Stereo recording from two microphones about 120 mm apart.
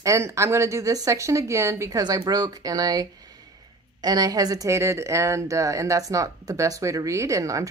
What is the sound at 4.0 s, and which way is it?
Speech, 35° right (ahead or behind).